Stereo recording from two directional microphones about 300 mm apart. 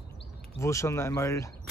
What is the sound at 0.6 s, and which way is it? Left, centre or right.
Speech, centre.